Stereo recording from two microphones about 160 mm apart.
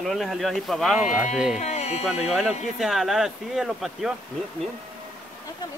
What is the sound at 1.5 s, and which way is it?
Speech, 45° left (ahead or behind).